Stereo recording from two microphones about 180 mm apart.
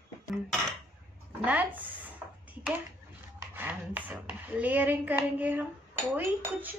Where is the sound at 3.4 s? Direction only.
10° right (ahead or behind).